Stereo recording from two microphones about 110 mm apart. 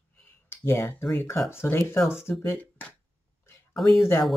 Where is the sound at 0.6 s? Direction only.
20° left (ahead or behind).